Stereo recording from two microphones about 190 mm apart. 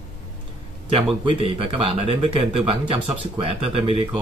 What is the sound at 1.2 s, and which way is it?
Speech, 30° right (ahead or behind).